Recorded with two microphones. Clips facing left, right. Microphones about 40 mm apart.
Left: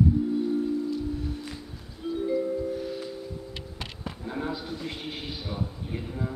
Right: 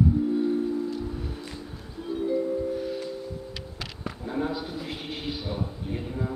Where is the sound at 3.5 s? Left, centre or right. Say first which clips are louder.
Right 1 dB; right.